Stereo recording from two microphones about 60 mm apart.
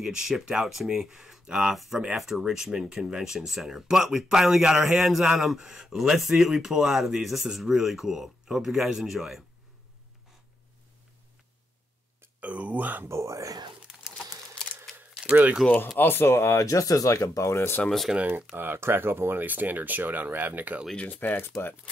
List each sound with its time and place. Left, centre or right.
0.0 s speech: centre
12.4 s speech: right
13.1 s speech: right
14.1 s crumpling: centre
15.2 s speech: right
16.0 s speech: left
16.5 s speech: left
17.5 s speech: left
17.8 s speech: centre
18.6 s speech: right
21.1 s speech: left